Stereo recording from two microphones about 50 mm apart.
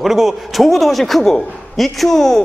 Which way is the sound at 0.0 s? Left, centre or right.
Centre.